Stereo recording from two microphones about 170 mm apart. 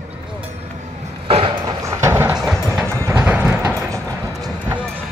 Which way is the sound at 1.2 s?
30° right (ahead or behind).